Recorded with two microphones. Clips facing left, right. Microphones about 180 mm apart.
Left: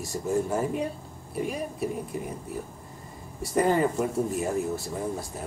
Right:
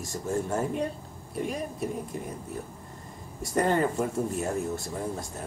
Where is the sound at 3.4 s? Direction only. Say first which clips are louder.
Left 2 dB; 5° left (ahead or behind).